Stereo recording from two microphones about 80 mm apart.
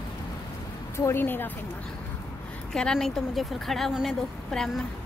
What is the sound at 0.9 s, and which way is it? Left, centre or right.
Speech, left.